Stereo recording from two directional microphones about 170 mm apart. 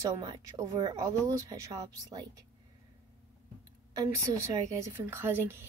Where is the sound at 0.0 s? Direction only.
25° right (ahead or behind).